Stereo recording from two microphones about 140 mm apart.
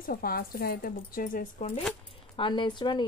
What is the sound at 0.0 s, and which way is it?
Speech, 90° left.